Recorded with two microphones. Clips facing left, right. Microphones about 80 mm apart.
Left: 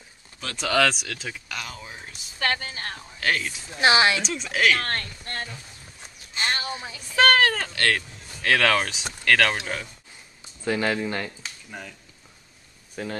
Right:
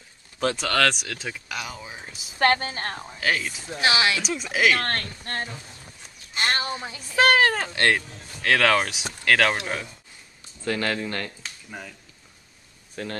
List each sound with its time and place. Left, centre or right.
0.6 s speech: centre
2.3 s a woman's voice: right
3.2 s speech: centre
3.8 s speech: left
4.2 s speech: centre
4.7 s speech: right
7.0 s speech: centre
8.4 s speech: centre
10.6 s speech: centre
11.4 s a sound: centre
12.9 s speech: centre